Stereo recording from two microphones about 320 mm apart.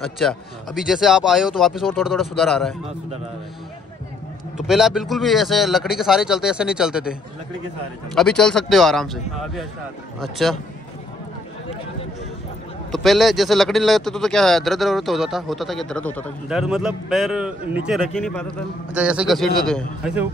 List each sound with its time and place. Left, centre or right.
0.0 s speech: centre
4.6 s speech: centre
12.9 s speech: centre